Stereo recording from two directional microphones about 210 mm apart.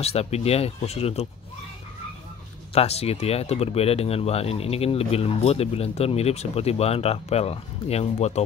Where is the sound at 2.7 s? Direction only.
30° left (ahead or behind).